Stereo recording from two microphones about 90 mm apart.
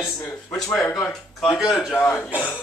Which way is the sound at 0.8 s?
25° left (ahead or behind).